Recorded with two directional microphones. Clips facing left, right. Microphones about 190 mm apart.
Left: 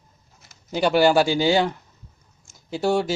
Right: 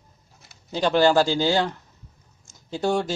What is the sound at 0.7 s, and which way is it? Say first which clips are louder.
Speech: left 1 dB; 10° left (ahead or behind).